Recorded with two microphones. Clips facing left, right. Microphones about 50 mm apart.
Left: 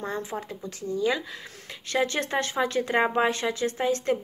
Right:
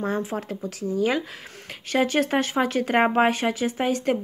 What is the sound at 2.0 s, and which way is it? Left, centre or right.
Speech, right.